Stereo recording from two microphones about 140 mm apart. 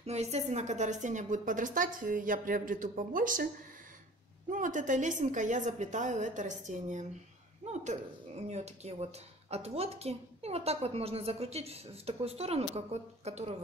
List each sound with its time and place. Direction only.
0.0 s a woman's voice: 50° right (ahead or behind); by 3.4 s 75° right (ahead or behind)
4.5 s a woman's voice: 70° right (ahead or behind); by 13.6 s 50° right (ahead or behind)